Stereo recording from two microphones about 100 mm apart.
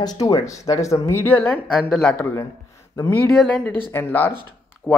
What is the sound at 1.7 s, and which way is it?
Speech, centre (ahead or behind).